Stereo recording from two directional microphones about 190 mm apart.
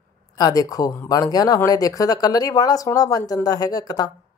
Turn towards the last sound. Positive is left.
turn(degrees=20)  # may be behind; listen again after turning